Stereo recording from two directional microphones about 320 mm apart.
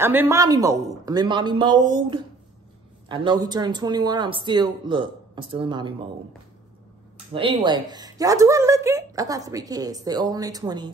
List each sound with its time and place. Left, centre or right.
0.0 s a woman's voice: centre
7.3 s a woman's voice: centre